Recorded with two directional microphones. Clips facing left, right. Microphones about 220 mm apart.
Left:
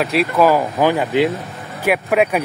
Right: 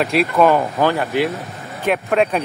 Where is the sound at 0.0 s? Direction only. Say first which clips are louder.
Even; centre (ahead or behind).